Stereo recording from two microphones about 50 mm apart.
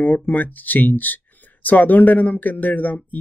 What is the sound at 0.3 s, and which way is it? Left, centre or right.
Speech, left.